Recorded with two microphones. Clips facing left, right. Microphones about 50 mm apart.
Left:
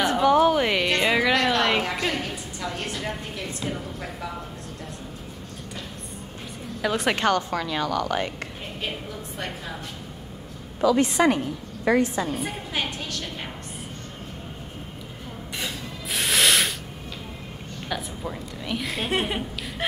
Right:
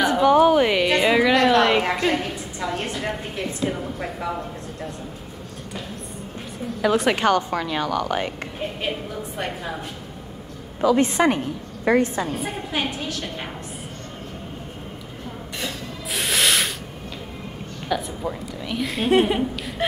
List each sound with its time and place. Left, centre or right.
0.0 s a sound: centre
2.0 s a woman's voice: centre
2.7 s a sound: centre
6.8 s a woman's voice: centre
7.5 s a woman's voice: centre
10.8 s a woman's voice: right
12.4 s a woman's voice: centre
15.6 s music: centre
17.8 s a woman's voice: centre